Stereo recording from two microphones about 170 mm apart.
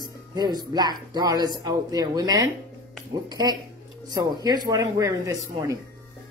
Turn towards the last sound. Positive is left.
turn(degrees=-20)  # may be behind; listen again after turning